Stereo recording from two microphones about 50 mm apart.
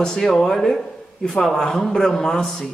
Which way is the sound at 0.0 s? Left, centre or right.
Centre.